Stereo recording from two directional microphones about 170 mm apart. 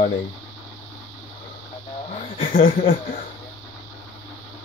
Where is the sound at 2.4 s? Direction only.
60° left (ahead or behind).